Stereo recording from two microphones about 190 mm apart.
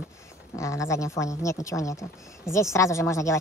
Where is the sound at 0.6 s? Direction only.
15° left (ahead or behind).